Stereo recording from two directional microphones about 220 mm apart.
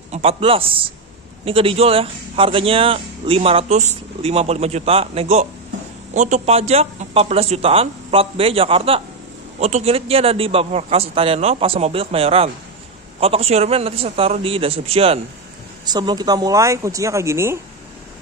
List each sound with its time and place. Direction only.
0.1 s speech: 25° right (ahead or behind)